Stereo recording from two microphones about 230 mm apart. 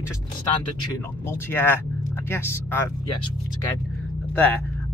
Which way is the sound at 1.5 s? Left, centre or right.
Centre.